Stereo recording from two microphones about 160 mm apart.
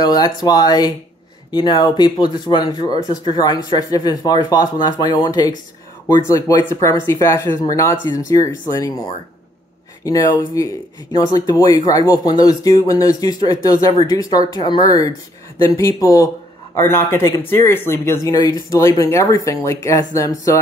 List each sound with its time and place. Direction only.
0.0 s a man's voice: 25° left (ahead or behind)